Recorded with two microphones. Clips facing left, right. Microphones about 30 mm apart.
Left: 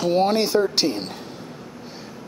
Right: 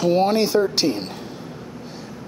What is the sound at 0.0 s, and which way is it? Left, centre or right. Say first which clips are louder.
Speech: right 1 dB; centre.